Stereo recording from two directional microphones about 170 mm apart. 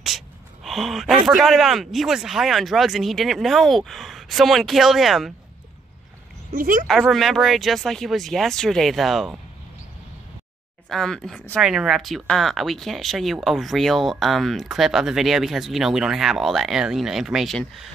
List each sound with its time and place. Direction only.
0.7 s speech: centre (ahead or behind)
6.5 s speech: 55° right (ahead or behind)
6.9 s speech: centre (ahead or behind)
10.9 s speech: 5° left (ahead or behind)